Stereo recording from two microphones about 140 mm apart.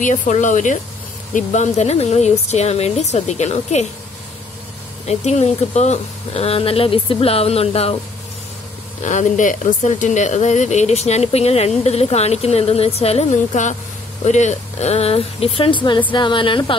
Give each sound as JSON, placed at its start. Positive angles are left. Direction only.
{"t": 0.0, "sound": "speech", "side_deg": 60}
{"t": 5.0, "sound": "speech", "side_deg": 50}
{"t": 9.0, "sound": "a woman's voice", "side_deg": 60}